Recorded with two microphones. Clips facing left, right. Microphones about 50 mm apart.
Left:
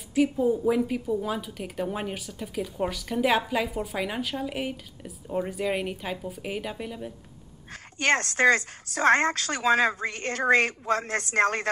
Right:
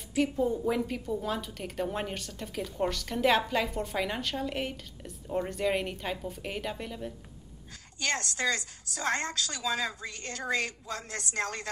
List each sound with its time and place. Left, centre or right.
0.1 s a woman's voice: centre
7.7 s a woman's voice: left